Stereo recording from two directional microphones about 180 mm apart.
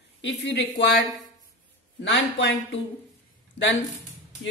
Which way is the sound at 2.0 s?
75° left (ahead or behind).